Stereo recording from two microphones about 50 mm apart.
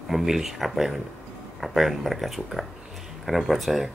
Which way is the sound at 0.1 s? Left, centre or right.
Centre.